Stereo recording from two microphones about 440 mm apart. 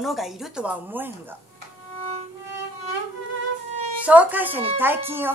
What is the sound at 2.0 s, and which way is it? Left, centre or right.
Violin, right.